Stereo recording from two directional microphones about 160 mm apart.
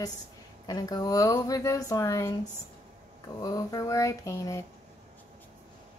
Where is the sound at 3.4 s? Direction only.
25° left (ahead or behind).